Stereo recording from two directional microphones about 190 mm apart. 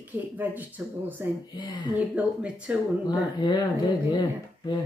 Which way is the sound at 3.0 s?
20° left (ahead or behind).